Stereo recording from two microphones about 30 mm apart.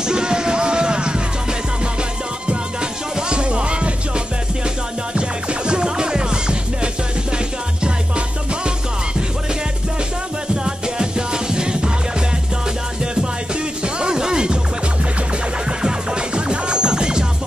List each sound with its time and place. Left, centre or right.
0.0 s music: right
2.4 s music: right
10.5 s music: right
13.0 s music: right
13.8 s a sound: right
15.8 s music: right